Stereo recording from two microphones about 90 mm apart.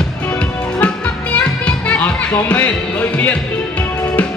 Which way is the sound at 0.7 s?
15° left (ahead or behind).